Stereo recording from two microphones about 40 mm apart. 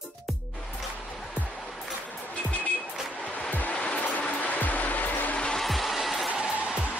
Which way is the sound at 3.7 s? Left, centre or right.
Left.